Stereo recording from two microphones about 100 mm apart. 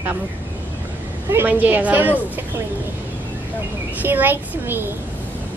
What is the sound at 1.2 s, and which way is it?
Speech, 20° right (ahead or behind).